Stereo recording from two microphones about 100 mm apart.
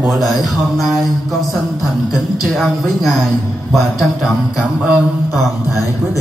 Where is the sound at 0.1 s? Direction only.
Centre (ahead or behind).